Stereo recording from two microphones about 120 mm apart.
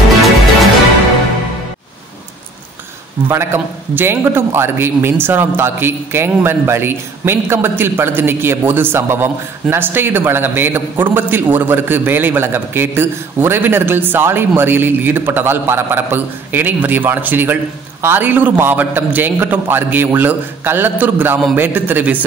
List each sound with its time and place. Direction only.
3.3 s a man's voice: 20° right (ahead or behind)